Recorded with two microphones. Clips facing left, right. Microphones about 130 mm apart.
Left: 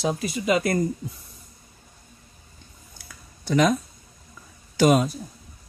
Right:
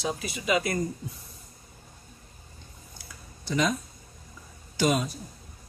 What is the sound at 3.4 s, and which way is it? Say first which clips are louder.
Speech: left 6 dB; 60° left (ahead or behind).